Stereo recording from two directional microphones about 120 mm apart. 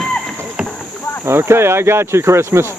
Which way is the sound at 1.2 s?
20° right (ahead or behind).